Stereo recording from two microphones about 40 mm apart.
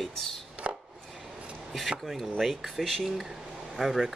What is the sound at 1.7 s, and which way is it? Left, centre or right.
Speech, centre.